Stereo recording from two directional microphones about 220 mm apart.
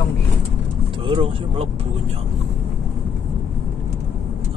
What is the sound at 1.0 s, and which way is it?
Speech, 25° right (ahead or behind).